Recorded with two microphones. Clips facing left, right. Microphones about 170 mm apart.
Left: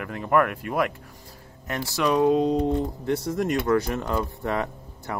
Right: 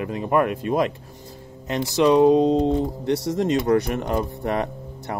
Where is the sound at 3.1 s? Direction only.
75° right (ahead or behind).